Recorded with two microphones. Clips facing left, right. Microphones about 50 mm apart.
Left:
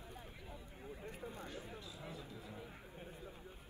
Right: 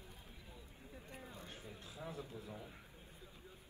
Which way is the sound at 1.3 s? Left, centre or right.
Left.